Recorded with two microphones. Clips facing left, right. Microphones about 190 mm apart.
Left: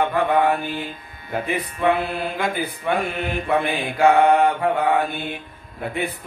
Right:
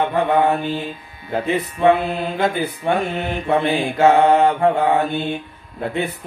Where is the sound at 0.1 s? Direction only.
20° right (ahead or behind).